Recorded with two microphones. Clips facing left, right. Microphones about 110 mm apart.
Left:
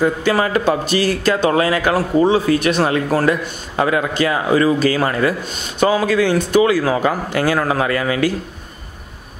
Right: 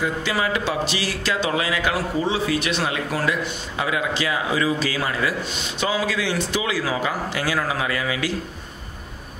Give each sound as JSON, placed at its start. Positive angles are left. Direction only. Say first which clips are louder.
{"t": 0.0, "sound": "a man's voice", "louder": "left 7 dB", "side_deg": 45}